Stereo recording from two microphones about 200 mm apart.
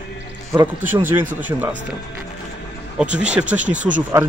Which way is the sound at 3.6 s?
40° right (ahead or behind).